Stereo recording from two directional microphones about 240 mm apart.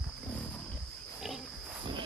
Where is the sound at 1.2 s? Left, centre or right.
Centre.